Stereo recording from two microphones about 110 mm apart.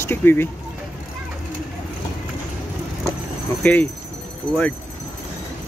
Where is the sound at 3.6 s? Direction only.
15° left (ahead or behind).